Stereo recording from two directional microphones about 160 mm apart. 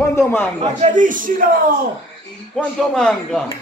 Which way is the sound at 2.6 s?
5° left (ahead or behind).